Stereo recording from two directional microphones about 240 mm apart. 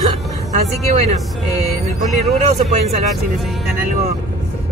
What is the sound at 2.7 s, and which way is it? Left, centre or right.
Speech, right.